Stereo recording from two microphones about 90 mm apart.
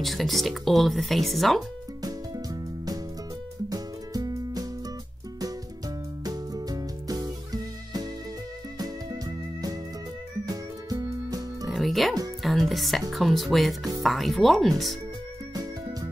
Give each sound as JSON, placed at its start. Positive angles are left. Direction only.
{"t": 0.0, "sound": "speech", "side_deg": 0}
{"t": 2.0, "sound": "music", "side_deg": -45}
{"t": 6.2, "sound": "music", "side_deg": -45}
{"t": 11.7, "sound": "music", "side_deg": 0}
{"t": 13.1, "sound": "speech", "side_deg": 0}